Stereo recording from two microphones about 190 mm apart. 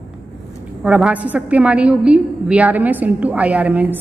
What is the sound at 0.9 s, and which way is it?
A woman's voice, 5° right (ahead or behind).